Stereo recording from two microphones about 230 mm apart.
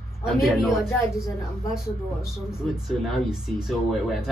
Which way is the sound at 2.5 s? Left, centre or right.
Centre.